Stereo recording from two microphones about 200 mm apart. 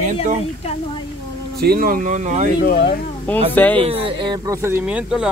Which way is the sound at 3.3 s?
10° left (ahead or behind).